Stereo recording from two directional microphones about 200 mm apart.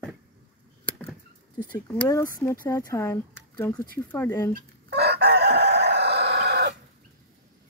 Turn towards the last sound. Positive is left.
turn(degrees=-55)  # may be behind; listen again after turning